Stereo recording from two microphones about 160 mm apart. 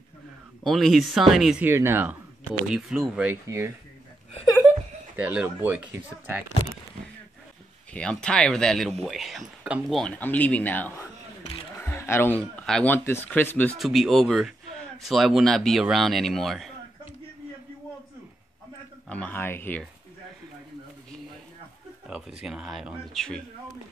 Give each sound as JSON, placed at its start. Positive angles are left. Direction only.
{"t": 0.7, "sound": "a man's voice", "side_deg": 0}
{"t": 1.7, "sound": "speech", "side_deg": -15}
{"t": 2.7, "sound": "a man's voice", "side_deg": -5}
{"t": 3.4, "sound": "speech", "side_deg": -15}
{"t": 5.1, "sound": "speech", "side_deg": -10}
{"t": 7.9, "sound": "a man's voice", "side_deg": 5}
{"t": 13.7, "sound": "a man's voice", "side_deg": 0}
{"t": 19.0, "sound": "speech", "side_deg": 10}
{"t": 22.0, "sound": "a man's voice", "side_deg": -5}